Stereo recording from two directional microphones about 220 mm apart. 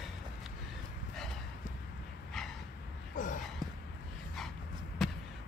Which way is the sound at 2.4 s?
Centre (ahead or behind).